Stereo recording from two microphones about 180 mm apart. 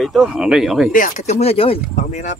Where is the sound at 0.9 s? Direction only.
45° left (ahead or behind).